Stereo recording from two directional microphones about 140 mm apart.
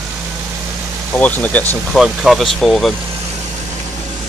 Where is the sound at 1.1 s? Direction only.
10° left (ahead or behind).